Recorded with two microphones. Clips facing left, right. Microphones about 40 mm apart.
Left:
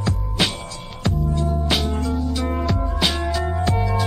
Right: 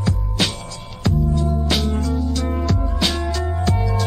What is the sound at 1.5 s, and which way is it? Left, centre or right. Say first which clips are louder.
Music: right 1 dB; centre.